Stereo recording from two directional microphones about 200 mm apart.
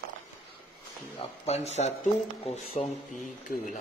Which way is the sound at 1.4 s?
30° left (ahead or behind).